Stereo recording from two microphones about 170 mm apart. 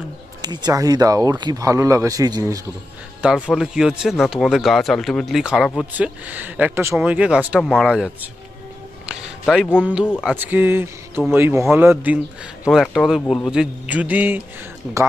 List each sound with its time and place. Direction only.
0.4 s speech: 25° right (ahead or behind)
3.2 s speech: 5° right (ahead or behind)
10.2 s speech: 10° right (ahead or behind)